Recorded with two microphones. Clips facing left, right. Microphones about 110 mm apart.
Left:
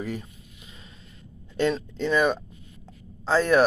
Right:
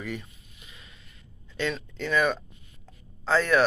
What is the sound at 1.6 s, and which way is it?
Speech, 35° left (ahead or behind).